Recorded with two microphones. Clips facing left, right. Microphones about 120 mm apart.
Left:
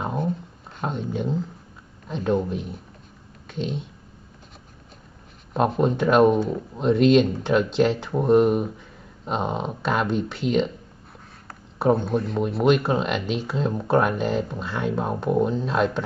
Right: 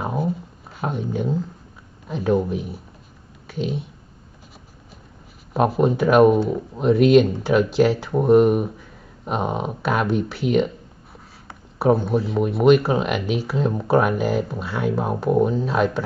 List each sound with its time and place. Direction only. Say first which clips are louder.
0.0 s a sound: right 2 dB; 5° right (ahead or behind)
0.7 s speech: right 2 dB; 5° right (ahead or behind)
5.5 s speech: right 3 dB; 5° right (ahead or behind)